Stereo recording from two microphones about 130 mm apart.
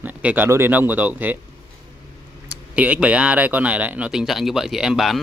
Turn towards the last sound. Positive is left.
turn(degrees=0)  # may be behind; listen again after turning